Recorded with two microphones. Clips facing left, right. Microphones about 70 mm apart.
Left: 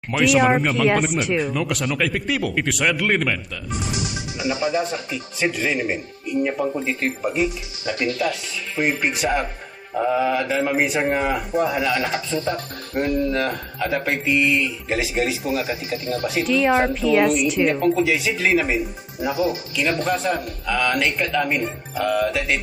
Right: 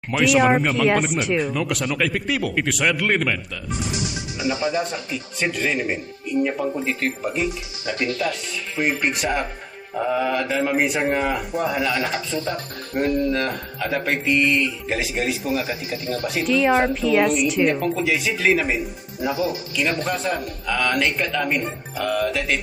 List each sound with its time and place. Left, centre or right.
0.1 s speech: centre
3.8 s speech: left
4.8 s speech: centre
19.3 s speech: left
19.8 s speech: centre